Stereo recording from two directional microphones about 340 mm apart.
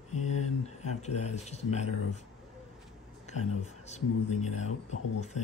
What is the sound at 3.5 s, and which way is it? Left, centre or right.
Speech, centre.